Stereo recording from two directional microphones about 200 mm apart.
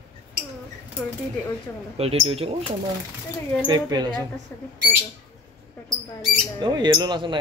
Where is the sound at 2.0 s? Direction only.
30° right (ahead or behind).